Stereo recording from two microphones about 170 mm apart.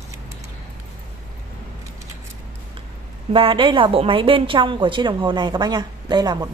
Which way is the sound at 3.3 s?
30° right (ahead or behind).